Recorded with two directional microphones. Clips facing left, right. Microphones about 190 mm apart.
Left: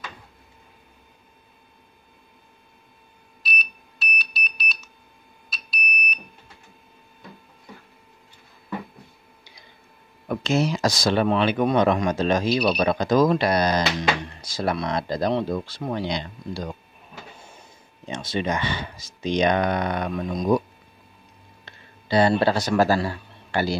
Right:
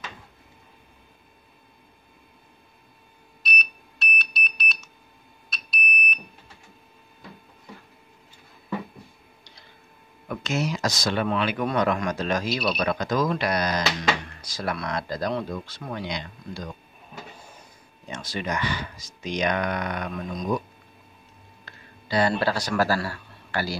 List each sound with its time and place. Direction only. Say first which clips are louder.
3.4 s beep: right 1 dB; centre (ahead or behind)
5.5 s alarm: right 1 dB; centre (ahead or behind)
9.4 s tick-tock: left 1 dB; 10° left (ahead or behind)
10.2 s speech: left 5 dB; 30° left (ahead or behind)
18.0 s speech: left 5 dB; 25° left (ahead or behind)
21.6 s speech: left 5 dB; 25° left (ahead or behind)